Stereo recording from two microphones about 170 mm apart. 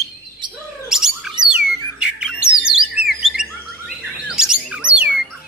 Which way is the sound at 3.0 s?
40° left (ahead or behind).